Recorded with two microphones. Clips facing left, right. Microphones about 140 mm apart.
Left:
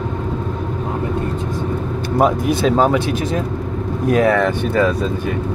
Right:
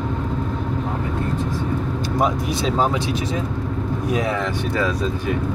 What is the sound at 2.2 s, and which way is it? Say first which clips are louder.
Speech: left 6 dB; 55° left (ahead or behind).